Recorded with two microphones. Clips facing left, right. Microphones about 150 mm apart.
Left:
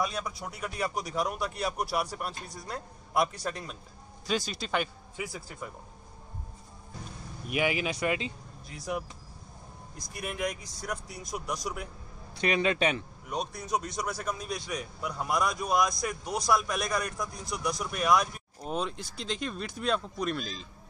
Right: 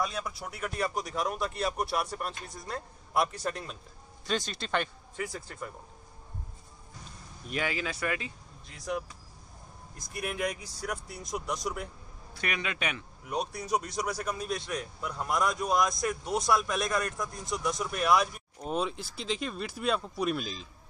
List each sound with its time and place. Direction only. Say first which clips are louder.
0.0 s a man's voice: left 1 dB; centre (ahead or behind)
7.4 s speech: left 4 dB; 15° left (ahead or behind)
8.6 s a man's voice: even; 5° left (ahead or behind)
10.1 s a man's voice: right 1 dB; 5° right (ahead or behind)
12.4 s a man's voice: left 8 dB; 25° left (ahead or behind)
13.3 s a man's voice: right 1 dB; 10° right (ahead or behind)